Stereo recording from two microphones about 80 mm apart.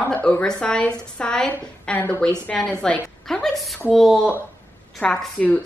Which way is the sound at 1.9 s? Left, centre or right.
Left.